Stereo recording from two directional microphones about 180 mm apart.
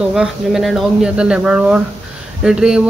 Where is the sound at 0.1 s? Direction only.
Centre (ahead or behind).